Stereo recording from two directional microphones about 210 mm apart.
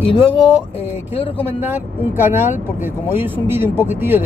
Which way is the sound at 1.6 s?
10° right (ahead or behind).